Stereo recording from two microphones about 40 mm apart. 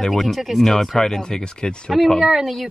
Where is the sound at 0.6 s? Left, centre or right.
Centre.